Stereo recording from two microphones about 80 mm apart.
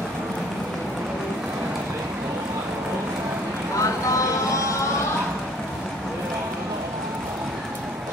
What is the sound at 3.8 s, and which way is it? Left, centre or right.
Vehicle, left.